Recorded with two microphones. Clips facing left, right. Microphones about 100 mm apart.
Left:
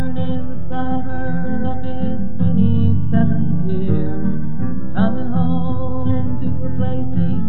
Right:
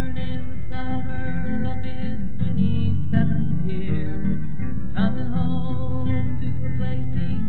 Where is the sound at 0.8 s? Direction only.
35° left (ahead or behind).